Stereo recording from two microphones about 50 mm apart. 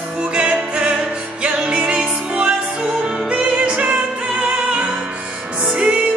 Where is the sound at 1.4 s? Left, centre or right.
Right.